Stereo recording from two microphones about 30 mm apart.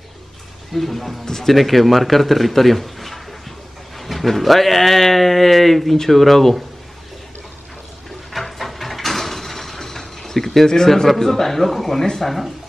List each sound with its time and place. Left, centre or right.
0.7 s speech: centre
1.2 s speech: centre
1.5 s a man's voice: centre
8.3 s a sound: centre
11.1 s speech: centre